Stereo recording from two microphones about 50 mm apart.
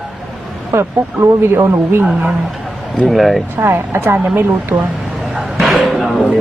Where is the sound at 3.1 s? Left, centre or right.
Centre.